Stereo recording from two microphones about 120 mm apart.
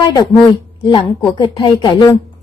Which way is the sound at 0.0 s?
35° left (ahead or behind).